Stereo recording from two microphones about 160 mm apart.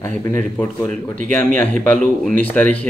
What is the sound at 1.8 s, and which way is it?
Speech, 5° left (ahead or behind).